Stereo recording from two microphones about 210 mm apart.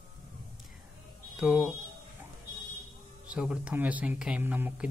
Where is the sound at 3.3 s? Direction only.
5° right (ahead or behind).